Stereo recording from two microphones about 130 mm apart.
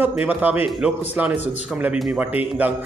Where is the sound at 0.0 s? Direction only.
10° right (ahead or behind).